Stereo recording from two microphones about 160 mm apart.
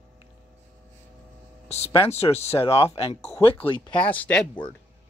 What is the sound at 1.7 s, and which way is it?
Speech, 40° left (ahead or behind).